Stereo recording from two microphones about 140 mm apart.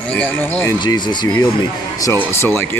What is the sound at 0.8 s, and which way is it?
Speech, 30° left (ahead or behind).